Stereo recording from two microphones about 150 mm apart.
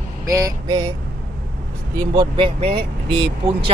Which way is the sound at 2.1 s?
35° right (ahead or behind).